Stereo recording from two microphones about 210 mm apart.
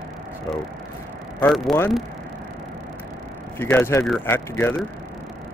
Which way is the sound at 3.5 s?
10° left (ahead or behind).